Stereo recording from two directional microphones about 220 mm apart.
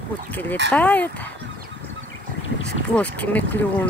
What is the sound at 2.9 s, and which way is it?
Speech, 5° left (ahead or behind).